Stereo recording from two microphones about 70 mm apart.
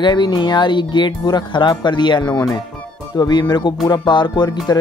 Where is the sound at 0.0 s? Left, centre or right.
Left.